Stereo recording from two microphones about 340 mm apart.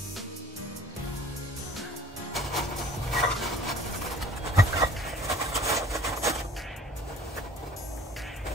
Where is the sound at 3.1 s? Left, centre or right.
Centre.